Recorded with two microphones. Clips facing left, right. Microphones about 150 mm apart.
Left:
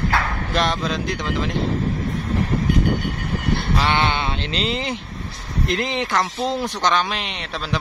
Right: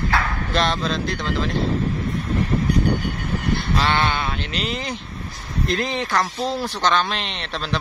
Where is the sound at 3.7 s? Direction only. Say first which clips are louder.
Left 1 dB; 15° left (ahead or behind).